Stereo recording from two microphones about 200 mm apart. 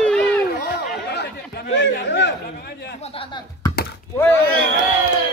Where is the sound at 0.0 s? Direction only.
5° left (ahead or behind).